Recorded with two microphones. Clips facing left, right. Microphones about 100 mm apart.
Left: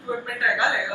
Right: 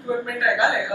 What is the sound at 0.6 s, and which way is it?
Speech, 20° right (ahead or behind).